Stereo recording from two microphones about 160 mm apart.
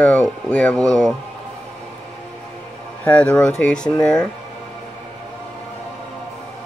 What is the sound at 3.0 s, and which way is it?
Speech, 5° left (ahead or behind).